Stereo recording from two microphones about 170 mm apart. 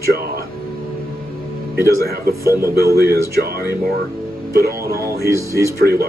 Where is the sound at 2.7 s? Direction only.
65° right (ahead or behind).